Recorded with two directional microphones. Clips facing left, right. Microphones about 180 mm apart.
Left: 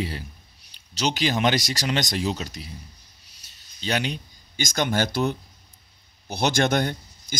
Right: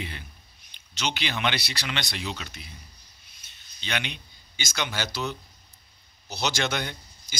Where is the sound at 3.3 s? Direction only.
40° left (ahead or behind).